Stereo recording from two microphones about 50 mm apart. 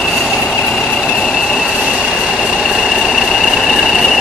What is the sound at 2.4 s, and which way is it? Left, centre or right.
Vehicle, centre.